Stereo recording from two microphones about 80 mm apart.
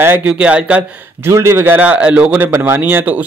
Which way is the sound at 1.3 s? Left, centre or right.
Right.